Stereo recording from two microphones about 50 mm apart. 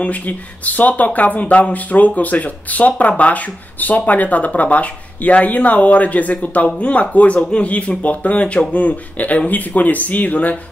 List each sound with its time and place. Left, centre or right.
0.0 s speech: left